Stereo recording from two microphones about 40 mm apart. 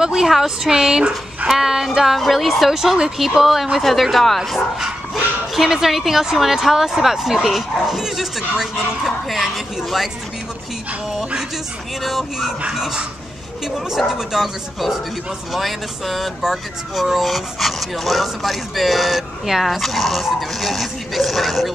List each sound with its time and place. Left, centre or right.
0.0 s speech: centre
3.8 s speech: centre
12.0 s speech: centre